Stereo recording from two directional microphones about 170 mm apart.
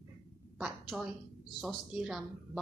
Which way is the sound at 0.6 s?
5° right (ahead or behind).